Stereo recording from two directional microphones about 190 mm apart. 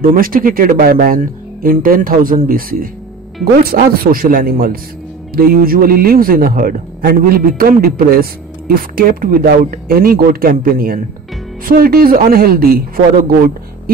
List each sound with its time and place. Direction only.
0.0 s speech: 50° right (ahead or behind)